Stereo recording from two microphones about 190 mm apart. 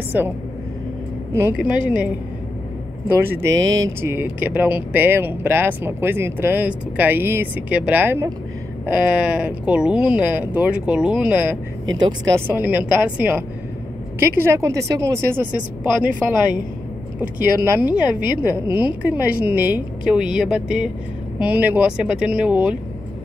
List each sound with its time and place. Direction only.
0.1 s speech: 10° right (ahead or behind)
1.3 s speech: 10° right (ahead or behind)
3.4 s speech: 80° right
3.7 s speech: 15° right (ahead or behind)
12.0 s speech: 20° right (ahead or behind)
12.4 s speech: 10° right (ahead or behind)
17.7 s a woman's voice: 10° right (ahead or behind)